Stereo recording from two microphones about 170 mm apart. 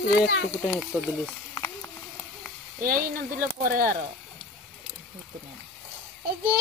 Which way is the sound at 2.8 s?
60° right (ahead or behind).